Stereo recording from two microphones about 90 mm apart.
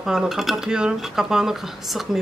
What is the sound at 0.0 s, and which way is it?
Speech, 5° right (ahead or behind).